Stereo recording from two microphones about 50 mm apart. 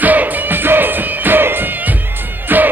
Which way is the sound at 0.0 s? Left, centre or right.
Right.